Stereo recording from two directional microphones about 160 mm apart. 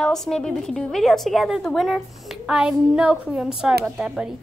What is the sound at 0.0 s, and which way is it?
A woman's voice, 5° left (ahead or behind).